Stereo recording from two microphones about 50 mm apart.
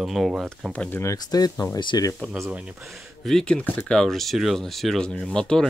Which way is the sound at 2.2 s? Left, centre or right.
Left.